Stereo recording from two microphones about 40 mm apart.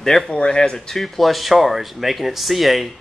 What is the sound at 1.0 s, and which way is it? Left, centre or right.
Speech, centre.